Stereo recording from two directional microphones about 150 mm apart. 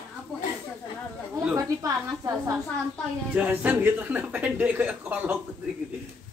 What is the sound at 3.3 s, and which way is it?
Speech, 10° right (ahead or behind).